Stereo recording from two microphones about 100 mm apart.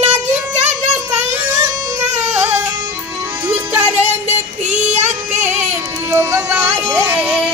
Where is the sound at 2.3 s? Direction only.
20° right (ahead or behind).